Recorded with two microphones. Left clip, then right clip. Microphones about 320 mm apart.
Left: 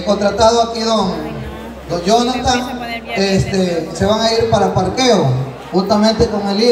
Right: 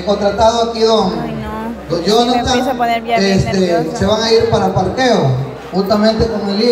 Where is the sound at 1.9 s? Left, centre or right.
Centre.